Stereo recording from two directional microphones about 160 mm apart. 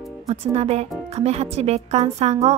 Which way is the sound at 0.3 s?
40° right (ahead or behind).